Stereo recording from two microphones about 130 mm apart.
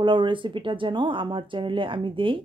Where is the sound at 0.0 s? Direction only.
40° right (ahead or behind).